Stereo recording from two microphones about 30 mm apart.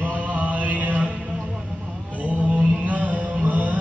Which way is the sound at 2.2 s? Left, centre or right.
Right.